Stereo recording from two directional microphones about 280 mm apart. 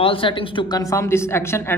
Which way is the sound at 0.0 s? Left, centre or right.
Centre.